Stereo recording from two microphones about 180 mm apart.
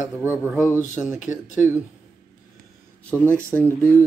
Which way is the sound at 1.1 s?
45° left (ahead or behind).